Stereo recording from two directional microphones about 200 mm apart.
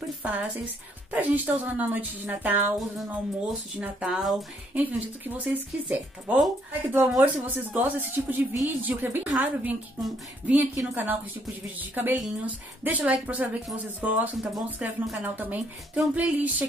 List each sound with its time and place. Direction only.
1.1 s speech: 10° right (ahead or behind)